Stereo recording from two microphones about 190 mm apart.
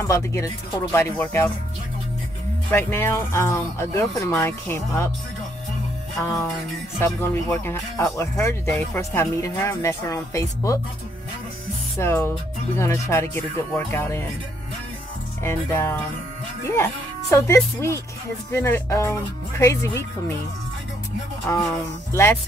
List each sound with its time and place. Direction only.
0.0 s speech: 15° left (ahead or behind)
2.7 s speech: 10° left (ahead or behind)
7.2 s speech: 10° left (ahead or behind)
12.0 s speech: 15° left (ahead or behind)
15.4 s speech: 15° left (ahead or behind)
21.5 s speech: 10° left (ahead or behind)